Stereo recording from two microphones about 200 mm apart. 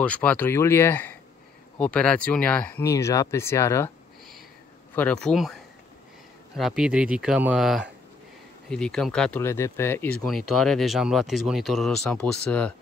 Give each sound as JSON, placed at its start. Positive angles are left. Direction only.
{"t": 0.0, "sound": "speech", "side_deg": 5}
{"t": 4.9, "sound": "speech", "side_deg": 5}
{"t": 10.2, "sound": "speech", "side_deg": 0}